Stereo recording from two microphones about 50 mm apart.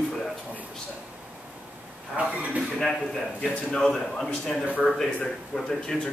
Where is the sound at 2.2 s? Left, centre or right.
Right.